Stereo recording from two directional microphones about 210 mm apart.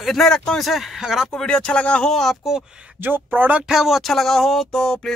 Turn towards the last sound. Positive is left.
turn(degrees=5)  # may be behind; listen again after turning